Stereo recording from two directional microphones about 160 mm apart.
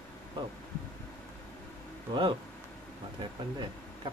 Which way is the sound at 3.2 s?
30° right (ahead or behind).